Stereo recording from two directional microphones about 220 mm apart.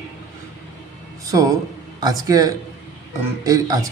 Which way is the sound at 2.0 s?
15° right (ahead or behind).